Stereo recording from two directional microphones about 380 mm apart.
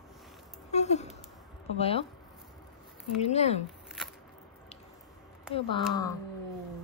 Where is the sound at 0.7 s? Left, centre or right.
Centre.